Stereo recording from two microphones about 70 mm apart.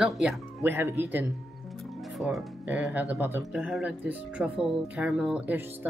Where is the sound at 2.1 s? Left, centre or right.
Centre.